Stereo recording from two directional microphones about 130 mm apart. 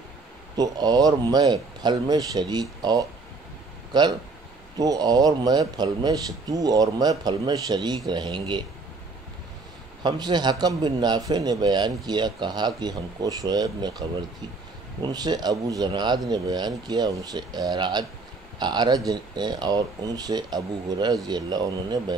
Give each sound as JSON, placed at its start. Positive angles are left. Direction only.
{"t": 0.6, "sound": "a man's voice", "side_deg": -30}
{"t": 10.0, "sound": "a man's voice", "side_deg": -35}